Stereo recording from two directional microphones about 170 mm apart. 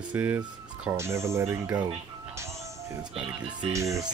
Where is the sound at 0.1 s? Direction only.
10° right (ahead or behind).